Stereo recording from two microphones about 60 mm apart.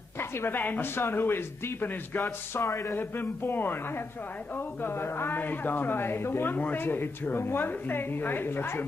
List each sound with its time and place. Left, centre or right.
0.2 s speech: left
2.6 s speech: left
3.0 s speech: left
4.8 s speech: left
6.5 s speech: left